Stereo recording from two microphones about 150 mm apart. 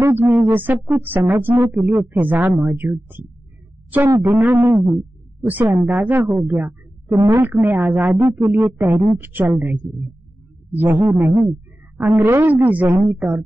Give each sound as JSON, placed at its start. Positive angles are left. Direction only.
{"t": 0.0, "sound": "speech", "side_deg": -15}